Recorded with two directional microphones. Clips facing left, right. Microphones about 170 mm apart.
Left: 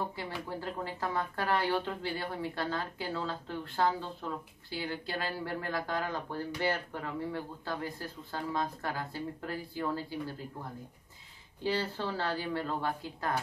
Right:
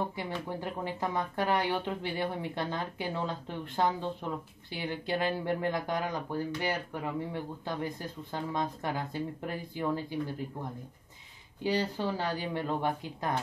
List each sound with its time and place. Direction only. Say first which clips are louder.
0.0 s speech: right 3 dB; 20° right (ahead or behind)
11.6 s speech: right 3 dB; 15° right (ahead or behind)